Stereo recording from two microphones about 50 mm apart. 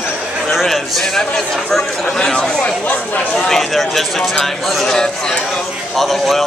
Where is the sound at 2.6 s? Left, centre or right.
Left.